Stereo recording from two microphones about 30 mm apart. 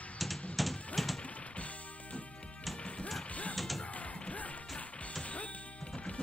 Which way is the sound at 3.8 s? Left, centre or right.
Left.